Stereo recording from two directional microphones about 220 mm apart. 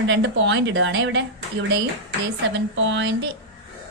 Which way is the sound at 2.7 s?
55° right (ahead or behind).